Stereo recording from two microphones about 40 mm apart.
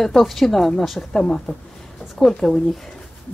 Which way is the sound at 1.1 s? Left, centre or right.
Centre.